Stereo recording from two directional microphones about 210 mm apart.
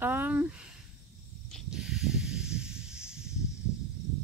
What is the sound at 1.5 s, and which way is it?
Snake, centre (ahead or behind).